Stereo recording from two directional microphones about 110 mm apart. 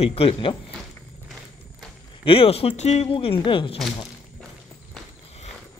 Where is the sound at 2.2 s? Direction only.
55° left (ahead or behind).